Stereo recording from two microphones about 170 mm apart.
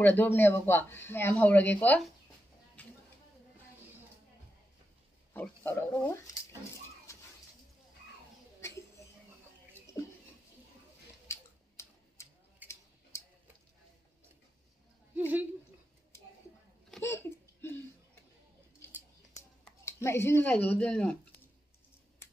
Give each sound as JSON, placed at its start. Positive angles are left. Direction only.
{"t": 0.0, "sound": "speech", "side_deg": 10}
{"t": 2.8, "sound": "a sound", "side_deg": 10}
{"t": 5.3, "sound": "speech", "side_deg": 15}
{"t": 7.1, "sound": "dog", "side_deg": 15}
{"t": 9.9, "sound": "a sound", "side_deg": 20}
{"t": 11.2, "sound": "tick-tock", "side_deg": 15}
{"t": 15.1, "sound": "speech", "side_deg": -10}
{"t": 17.0, "sound": "a sound", "side_deg": 15}
{"t": 19.8, "sound": "speech", "side_deg": 15}